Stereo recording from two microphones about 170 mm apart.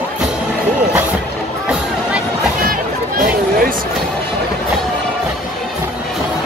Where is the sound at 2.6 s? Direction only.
55° right (ahead or behind).